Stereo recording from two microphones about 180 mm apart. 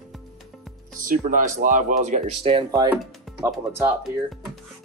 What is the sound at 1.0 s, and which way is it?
Speech, 50° right (ahead or behind).